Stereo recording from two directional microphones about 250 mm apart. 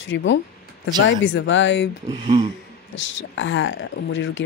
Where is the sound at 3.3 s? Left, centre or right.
Left.